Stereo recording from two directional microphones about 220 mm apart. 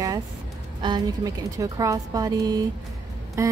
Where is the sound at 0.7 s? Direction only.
20° right (ahead or behind).